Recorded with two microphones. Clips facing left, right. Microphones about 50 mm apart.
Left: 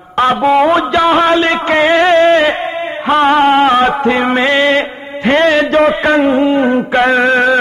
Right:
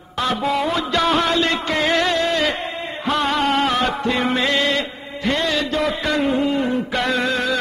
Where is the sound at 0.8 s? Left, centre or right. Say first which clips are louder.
Left 8 dB; left.